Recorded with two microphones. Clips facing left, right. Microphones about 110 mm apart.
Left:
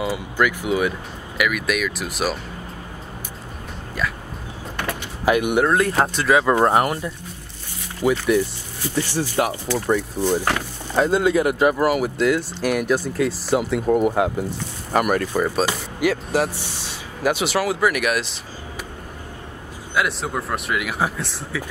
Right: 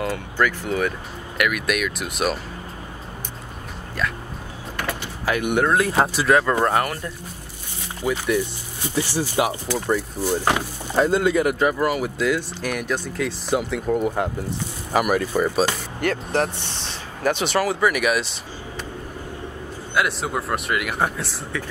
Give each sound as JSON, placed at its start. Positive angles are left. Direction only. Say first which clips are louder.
{"t": 0.0, "sound": "speech", "louder": "left 1 dB", "side_deg": 5}
{"t": 4.8, "sound": "speech", "louder": "left 5 dB", "side_deg": 10}
{"t": 6.5, "sound": "speech", "louder": "left 3 dB", "side_deg": 25}
{"t": 8.0, "sound": "speech", "louder": "left 5 dB", "side_deg": 60}
{"t": 8.8, "sound": "speech", "louder": "left 1 dB", "side_deg": -10}
{"t": 19.9, "sound": "speech", "louder": "even", "side_deg": 0}